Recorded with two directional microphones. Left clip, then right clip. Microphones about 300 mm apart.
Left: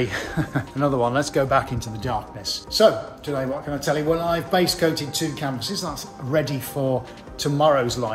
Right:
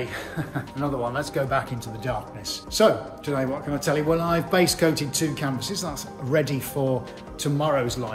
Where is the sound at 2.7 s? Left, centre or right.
Centre.